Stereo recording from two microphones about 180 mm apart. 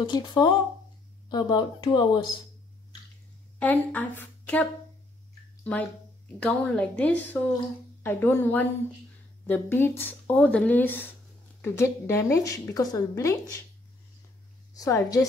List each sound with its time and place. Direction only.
0.0 s speech: 25° left (ahead or behind)
3.5 s a woman's voice: 10° left (ahead or behind)
14.7 s a woman's voice: 20° left (ahead or behind)